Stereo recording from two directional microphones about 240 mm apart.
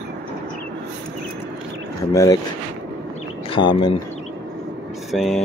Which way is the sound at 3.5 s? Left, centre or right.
Centre.